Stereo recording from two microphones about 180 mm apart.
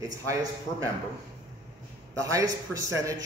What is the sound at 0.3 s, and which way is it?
Speech, 20° right (ahead or behind).